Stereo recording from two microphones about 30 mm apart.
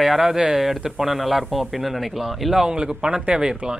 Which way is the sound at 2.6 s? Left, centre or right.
Right.